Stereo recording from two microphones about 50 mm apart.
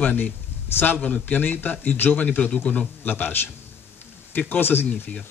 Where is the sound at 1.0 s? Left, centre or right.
Left.